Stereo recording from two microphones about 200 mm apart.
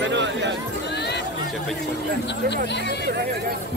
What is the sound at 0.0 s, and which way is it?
Horse, 60° right (ahead or behind).